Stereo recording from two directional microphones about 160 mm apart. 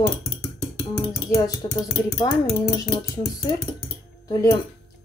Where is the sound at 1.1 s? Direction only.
25° left (ahead or behind).